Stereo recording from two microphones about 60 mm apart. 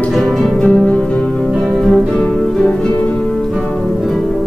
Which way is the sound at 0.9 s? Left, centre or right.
Centre.